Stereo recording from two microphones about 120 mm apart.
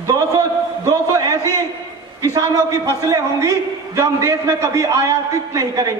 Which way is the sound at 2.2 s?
30° right (ahead or behind).